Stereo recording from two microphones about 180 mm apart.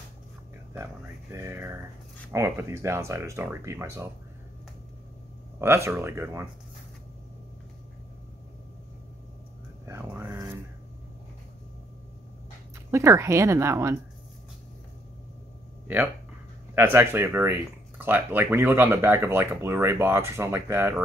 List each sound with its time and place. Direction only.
0.7 s speech: 15° right (ahead or behind)
5.6 s speech: 15° right (ahead or behind)
9.8 s vehicle: 10° right (ahead or behind)
12.7 s speech: 15° right (ahead or behind)
16.7 s speech: 10° right (ahead or behind)